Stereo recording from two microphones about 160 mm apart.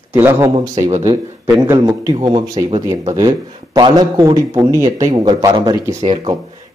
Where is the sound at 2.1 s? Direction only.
35° right (ahead or behind).